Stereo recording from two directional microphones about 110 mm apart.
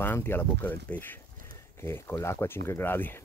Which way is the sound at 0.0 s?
20° left (ahead or behind).